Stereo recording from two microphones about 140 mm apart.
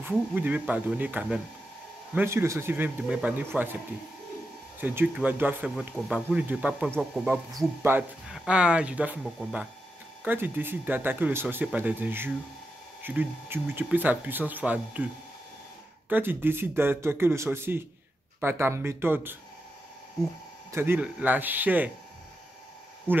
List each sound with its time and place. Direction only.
0.0 s speech: 10° right (ahead or behind)
4.7 s speech: 15° right (ahead or behind)
5.8 s speech: 5° right (ahead or behind)
7.9 s speech: 15° right (ahead or behind)
16.1 s speech: 15° right (ahead or behind)
20.7 s speech: 15° right (ahead or behind)
23.1 s speech: 15° right (ahead or behind)